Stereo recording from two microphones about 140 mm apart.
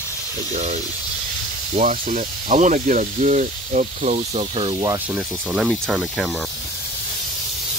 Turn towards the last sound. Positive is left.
turn(degrees=-5)  # may be behind; listen again after turning